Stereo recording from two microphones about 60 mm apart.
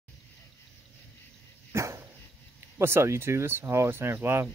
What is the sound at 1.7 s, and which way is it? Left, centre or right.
Dog, right.